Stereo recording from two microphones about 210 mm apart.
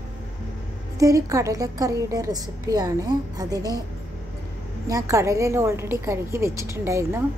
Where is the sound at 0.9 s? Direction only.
15° right (ahead or behind).